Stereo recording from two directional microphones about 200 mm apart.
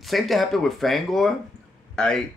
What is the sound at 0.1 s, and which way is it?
Speech, centre (ahead or behind).